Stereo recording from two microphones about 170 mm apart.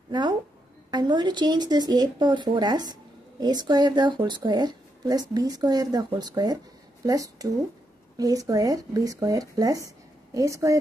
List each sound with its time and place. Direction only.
0.1 s speech: 25° right (ahead or behind)